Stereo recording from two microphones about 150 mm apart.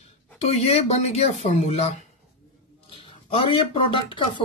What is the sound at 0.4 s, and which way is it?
Speech, 40° left (ahead or behind).